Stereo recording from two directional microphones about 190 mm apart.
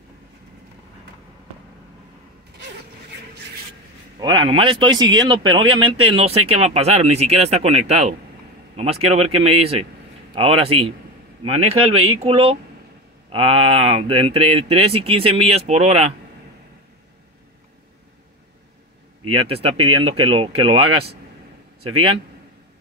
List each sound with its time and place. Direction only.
4.2 s speech: 25° right (ahead or behind)
19.2 s speech: 30° right (ahead or behind)